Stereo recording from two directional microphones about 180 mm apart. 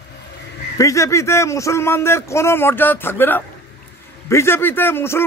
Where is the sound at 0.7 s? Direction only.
15° left (ahead or behind).